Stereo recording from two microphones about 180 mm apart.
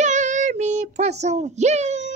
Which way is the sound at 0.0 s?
40° right (ahead or behind).